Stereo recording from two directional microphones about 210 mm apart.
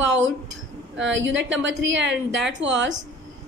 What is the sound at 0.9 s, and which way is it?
A woman's voice, 60° right (ahead or behind).